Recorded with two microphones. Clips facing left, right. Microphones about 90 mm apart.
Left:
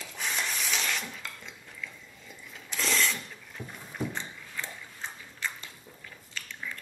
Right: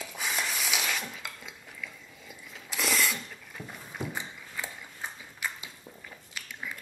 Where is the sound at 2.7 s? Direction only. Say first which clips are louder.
Even; 5° right (ahead or behind).